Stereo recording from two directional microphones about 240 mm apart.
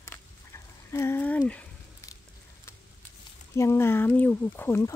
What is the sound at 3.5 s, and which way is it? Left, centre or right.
Speech, centre.